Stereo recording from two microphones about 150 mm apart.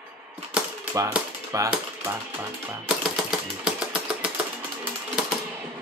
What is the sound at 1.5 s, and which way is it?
Speech, 20° right (ahead or behind).